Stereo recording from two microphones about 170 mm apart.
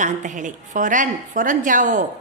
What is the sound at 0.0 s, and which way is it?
A woman's voice, 50° right (ahead or behind).